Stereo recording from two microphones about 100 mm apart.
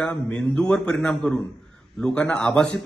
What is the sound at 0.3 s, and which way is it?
A man's voice, 10° left (ahead or behind).